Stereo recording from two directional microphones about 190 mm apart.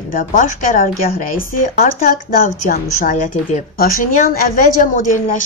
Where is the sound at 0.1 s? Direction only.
45° left (ahead or behind).